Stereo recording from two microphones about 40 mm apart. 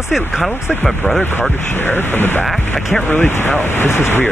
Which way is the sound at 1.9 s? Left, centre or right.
Left.